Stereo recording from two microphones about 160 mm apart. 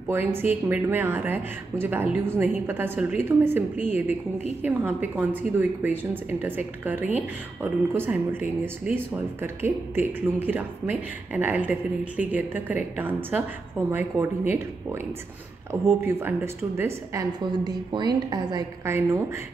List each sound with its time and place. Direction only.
0.1 s speech: 15° right (ahead or behind)
15.7 s speech: 15° right (ahead or behind)